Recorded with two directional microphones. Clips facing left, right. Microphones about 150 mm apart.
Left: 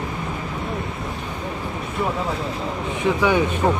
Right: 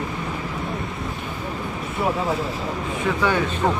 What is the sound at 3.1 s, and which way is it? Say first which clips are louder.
Speech: left 3 dB; 15° left (ahead or behind).